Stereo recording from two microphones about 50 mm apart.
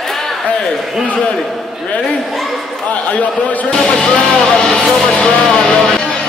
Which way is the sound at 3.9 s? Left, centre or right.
Left.